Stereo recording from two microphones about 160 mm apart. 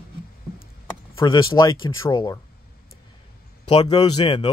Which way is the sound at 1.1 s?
25° left (ahead or behind).